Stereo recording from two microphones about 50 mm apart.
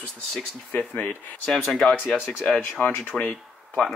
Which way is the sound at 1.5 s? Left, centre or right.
Centre.